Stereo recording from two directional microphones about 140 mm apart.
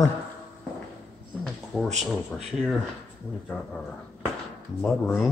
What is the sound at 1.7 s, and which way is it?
Speech, centre (ahead or behind).